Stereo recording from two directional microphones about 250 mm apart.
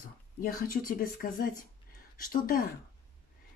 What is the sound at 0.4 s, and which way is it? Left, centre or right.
Speech, left.